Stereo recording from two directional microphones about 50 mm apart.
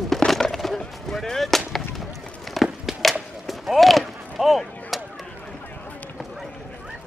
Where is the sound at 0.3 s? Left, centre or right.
Centre.